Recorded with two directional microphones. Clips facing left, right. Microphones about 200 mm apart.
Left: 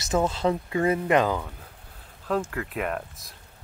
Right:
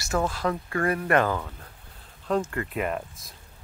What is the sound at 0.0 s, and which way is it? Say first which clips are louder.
Speech: left 3 dB; 20° left (ahead or behind).